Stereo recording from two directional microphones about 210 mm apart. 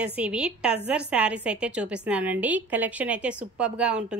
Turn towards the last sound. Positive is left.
turn(degrees=-5)  # may be behind; listen again after turning